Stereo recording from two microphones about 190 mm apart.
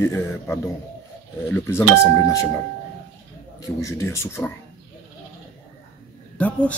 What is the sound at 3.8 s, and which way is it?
Speech, 15° left (ahead or behind).